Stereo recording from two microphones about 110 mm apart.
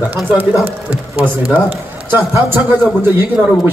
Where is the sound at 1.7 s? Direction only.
20° right (ahead or behind).